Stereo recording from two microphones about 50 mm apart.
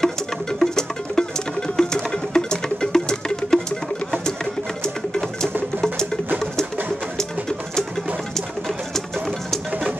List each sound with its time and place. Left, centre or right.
0.0 s music: centre
4.8 s music: centre
7.2 s a sound: centre
8.4 s bird: centre